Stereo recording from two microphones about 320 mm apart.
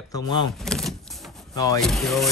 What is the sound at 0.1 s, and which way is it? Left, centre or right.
Speech, centre.